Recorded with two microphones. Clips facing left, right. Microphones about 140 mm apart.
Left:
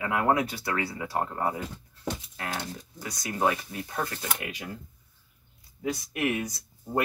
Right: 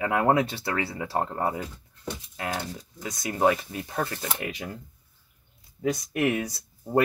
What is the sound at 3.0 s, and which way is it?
Speech, 25° right (ahead or behind).